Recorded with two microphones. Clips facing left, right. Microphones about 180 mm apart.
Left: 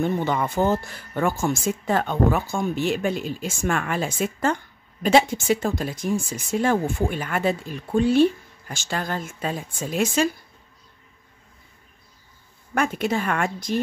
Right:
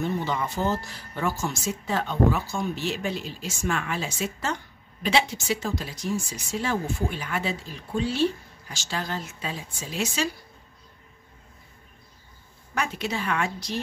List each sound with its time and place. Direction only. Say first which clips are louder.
0.0 s speech: left 4 dB; 55° left (ahead or behind)
12.7 s speech: left 6 dB; 50° left (ahead or behind)